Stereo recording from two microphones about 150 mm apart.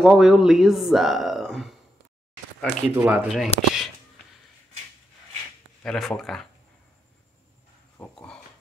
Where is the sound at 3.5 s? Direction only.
40° left (ahead or behind).